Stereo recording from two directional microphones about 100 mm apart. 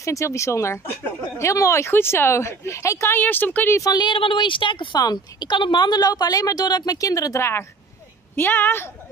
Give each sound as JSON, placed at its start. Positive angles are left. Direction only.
{"t": 0.0, "sound": "a woman's voice", "side_deg": 30}
{"t": 3.7, "sound": "a woman's voice", "side_deg": 40}
{"t": 5.0, "sound": "a woman's voice", "side_deg": 45}